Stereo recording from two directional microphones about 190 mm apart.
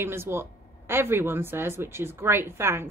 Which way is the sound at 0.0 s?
10° right (ahead or behind).